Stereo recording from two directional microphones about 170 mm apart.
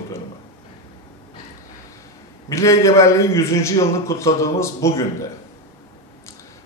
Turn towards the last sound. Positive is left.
turn(degrees=15)  # may be behind; listen again after turning